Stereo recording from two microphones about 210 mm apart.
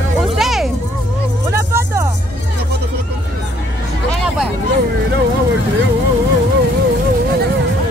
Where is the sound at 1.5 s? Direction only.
15° right (ahead or behind).